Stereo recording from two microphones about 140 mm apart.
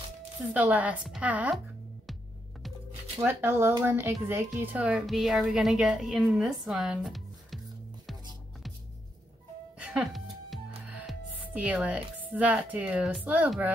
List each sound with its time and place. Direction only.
0.5 s a woman's voice: 10° right (ahead or behind)
3.2 s speech: 15° right (ahead or behind); by 7.6 s centre (ahead or behind)
9.8 s music: 10° right (ahead or behind)
11.1 s speech: 10° right (ahead or behind)